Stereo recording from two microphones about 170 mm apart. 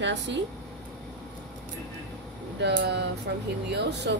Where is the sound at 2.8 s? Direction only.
90° right.